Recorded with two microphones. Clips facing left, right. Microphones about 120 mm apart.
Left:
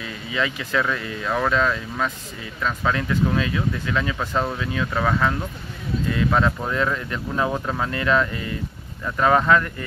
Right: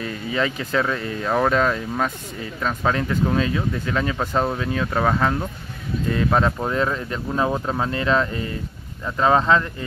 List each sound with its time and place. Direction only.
0.0 s speech: 40° right (ahead or behind)
9.0 s speech: 20° right (ahead or behind)